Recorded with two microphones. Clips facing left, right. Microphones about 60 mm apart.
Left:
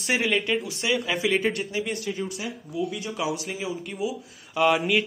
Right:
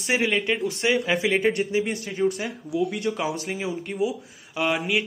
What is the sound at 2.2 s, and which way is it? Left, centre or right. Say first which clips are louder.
Speech: right 8 dB; right.